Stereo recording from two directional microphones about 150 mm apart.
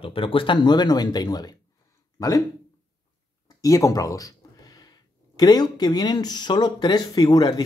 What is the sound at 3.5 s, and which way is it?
Speech, 25° left (ahead or behind).